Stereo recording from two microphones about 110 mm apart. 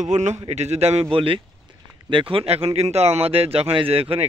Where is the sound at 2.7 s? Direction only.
70° right (ahead or behind).